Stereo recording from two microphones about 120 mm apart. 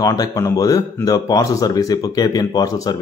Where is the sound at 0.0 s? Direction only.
30° left (ahead or behind).